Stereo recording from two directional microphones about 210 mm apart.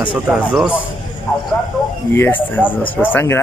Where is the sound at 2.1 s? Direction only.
10° left (ahead or behind).